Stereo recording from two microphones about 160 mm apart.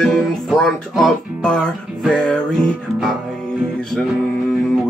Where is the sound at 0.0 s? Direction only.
Centre (ahead or behind).